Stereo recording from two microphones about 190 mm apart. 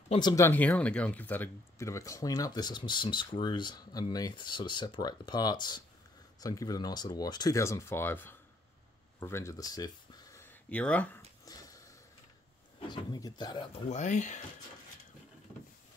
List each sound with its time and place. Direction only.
0.1 s speech: 20° left (ahead or behind)
0.5 s speech: 10° left (ahead or behind)
9.2 s a sound: 15° left (ahead or behind)
12.8 s speech: 20° left (ahead or behind)
13.8 s speech: 40° left (ahead or behind)